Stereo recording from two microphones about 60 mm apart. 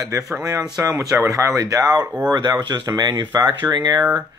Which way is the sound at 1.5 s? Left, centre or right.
Right.